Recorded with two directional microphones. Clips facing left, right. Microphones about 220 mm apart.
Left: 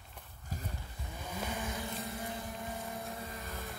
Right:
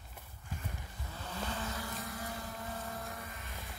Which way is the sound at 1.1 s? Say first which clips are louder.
Left 1 dB; 10° left (ahead or behind).